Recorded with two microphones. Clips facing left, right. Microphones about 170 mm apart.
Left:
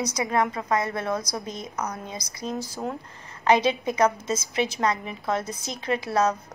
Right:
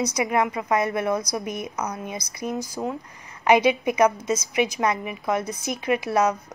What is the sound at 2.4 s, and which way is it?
A woman's voice, 20° right (ahead or behind).